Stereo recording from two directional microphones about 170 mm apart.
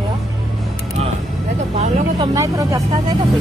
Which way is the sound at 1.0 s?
40° right (ahead or behind).